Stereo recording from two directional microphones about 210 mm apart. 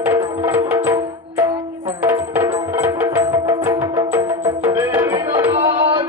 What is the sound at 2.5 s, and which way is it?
Music, 20° right (ahead or behind).